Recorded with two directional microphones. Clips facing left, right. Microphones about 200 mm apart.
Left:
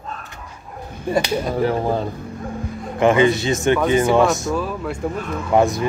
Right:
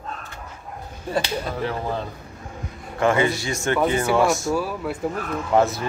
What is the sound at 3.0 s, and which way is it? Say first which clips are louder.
A man's voice: left 5 dB; 20° left (ahead or behind).